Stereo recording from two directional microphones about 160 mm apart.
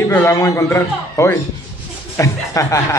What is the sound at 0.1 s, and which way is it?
A man's voice, 15° left (ahead or behind).